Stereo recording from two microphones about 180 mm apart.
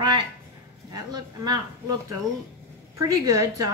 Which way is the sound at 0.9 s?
20° right (ahead or behind).